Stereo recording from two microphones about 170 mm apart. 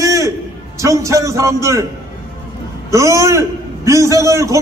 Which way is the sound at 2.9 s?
15° right (ahead or behind).